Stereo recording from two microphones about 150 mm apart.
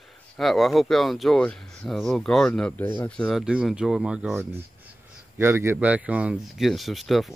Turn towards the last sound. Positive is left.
turn(degrees=0)  # may be behind; listen again after turning